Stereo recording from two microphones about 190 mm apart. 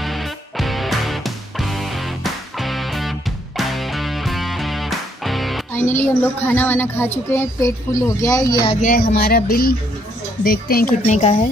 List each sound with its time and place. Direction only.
0.0 s music: centre (ahead or behind)
5.7 s speech: 10° left (ahead or behind)
8.8 s speech: 50° left (ahead or behind)
11.0 s a woman's voice: 35° left (ahead or behind)